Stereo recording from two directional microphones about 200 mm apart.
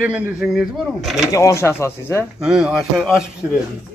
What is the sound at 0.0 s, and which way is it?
A man's voice, 5° right (ahead or behind).